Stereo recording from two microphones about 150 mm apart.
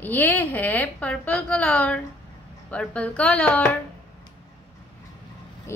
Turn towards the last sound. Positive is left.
turn(degrees=20)  # may be behind; listen again after turning